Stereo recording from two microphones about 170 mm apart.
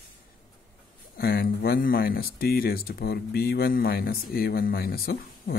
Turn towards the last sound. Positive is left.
turn(degrees=65)  # may be behind; listen again after turning